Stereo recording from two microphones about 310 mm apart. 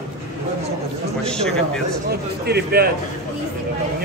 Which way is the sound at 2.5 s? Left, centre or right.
Right.